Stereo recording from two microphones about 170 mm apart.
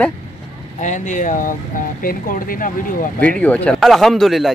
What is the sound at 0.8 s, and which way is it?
Speech, 45° left (ahead or behind).